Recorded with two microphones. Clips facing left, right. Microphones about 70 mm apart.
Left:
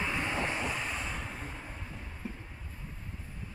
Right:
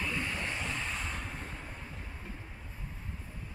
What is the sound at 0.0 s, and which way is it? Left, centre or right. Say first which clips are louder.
Vehicle: left 3 dB; centre.